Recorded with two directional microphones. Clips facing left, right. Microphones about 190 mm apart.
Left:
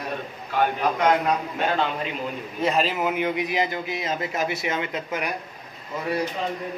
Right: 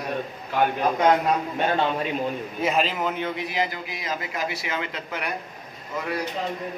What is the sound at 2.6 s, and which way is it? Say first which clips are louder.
A man's voice: left 1 dB; centre (ahead or behind).